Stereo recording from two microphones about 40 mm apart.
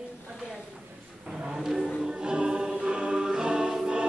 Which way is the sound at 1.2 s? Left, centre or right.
Centre.